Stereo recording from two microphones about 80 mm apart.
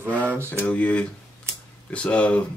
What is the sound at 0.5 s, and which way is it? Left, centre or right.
Speech, left.